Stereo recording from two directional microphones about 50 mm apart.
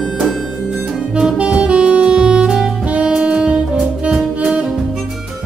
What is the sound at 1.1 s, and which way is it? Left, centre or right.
Saxophone, centre.